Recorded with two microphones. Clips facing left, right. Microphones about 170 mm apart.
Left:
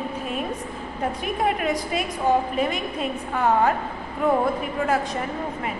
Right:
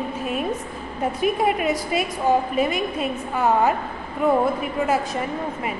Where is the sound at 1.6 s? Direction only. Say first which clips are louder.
Right 2 dB; 5° right (ahead or behind).